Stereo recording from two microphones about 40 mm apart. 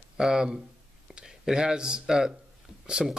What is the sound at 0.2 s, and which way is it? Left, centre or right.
Speech, centre.